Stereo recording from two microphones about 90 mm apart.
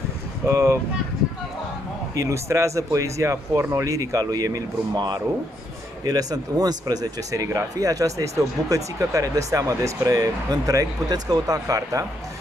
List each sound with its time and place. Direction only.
0.5 s speech: 35° right (ahead or behind)
2.1 s speech: 35° right (ahead or behind)